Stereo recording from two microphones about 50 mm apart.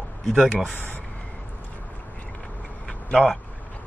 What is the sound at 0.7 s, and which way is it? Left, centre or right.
Speech, left.